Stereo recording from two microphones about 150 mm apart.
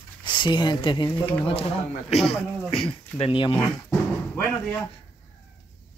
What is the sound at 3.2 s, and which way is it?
Speech, 35° left (ahead or behind).